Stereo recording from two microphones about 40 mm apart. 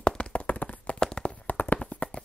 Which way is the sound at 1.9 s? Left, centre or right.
Left.